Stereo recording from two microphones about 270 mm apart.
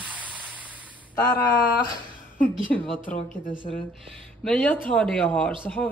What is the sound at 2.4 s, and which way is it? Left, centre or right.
Speech, left.